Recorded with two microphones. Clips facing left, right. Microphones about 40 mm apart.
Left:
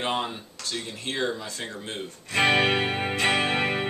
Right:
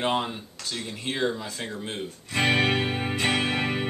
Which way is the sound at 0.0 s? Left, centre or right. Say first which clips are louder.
Right 2 dB; centre.